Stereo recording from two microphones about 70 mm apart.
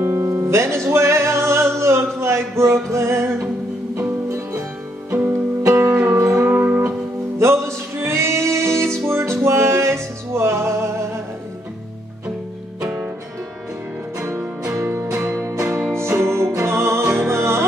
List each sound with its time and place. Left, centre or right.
0.0 s music: right
5.8 s music: right
6.1 s music: right
7.3 s music: right
14.1 s music: right
14.7 s music: right